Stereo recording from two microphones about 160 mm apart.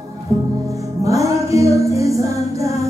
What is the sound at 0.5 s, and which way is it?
Music, 20° right (ahead or behind).